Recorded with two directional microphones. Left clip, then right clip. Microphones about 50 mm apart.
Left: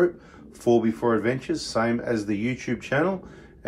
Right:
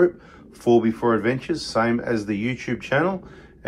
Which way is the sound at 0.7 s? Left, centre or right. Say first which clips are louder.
Right 3 dB; left.